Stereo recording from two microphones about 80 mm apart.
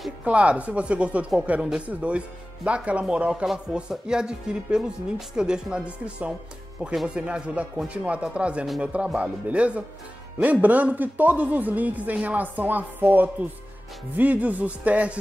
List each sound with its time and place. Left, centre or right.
0.2 s speech: centre